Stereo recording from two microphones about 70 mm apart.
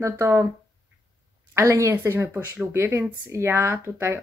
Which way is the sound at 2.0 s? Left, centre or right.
Right.